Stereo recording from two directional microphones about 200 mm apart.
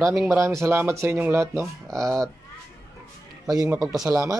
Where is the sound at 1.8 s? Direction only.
5° left (ahead or behind).